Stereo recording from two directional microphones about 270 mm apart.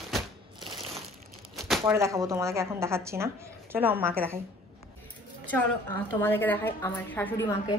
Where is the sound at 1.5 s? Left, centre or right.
Centre.